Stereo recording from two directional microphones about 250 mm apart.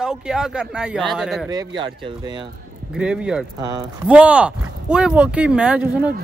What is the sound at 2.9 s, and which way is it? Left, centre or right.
Speech, centre.